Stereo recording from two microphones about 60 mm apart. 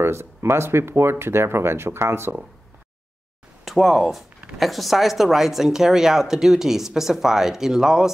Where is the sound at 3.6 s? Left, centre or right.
Centre.